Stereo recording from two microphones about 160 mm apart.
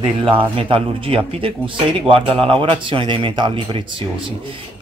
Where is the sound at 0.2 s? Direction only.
35° right (ahead or behind).